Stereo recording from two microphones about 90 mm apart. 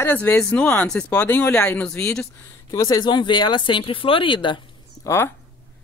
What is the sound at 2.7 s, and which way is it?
Speech, 45° left (ahead or behind).